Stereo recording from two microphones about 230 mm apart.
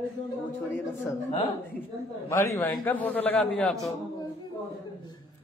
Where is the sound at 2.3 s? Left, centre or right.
Centre.